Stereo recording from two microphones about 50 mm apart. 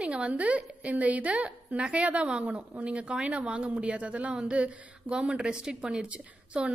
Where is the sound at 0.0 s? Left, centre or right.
Right.